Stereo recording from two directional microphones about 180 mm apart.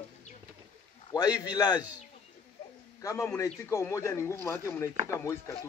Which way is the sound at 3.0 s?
15° left (ahead or behind).